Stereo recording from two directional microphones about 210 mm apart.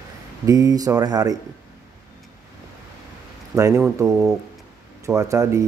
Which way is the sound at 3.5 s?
15° right (ahead or behind).